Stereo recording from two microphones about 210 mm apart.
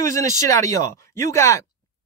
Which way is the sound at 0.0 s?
15° left (ahead or behind).